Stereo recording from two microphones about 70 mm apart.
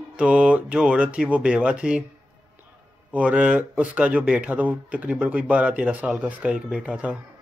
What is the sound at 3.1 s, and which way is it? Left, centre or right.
Speech, right.